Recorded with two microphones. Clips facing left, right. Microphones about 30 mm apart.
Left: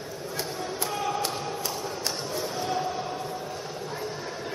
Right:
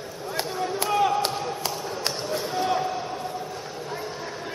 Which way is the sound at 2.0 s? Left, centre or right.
Right.